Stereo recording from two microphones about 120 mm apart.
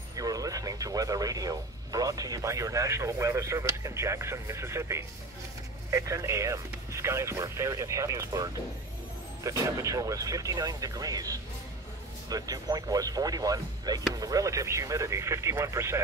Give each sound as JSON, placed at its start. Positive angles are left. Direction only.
{"t": 0.1, "sound": "speech", "side_deg": -30}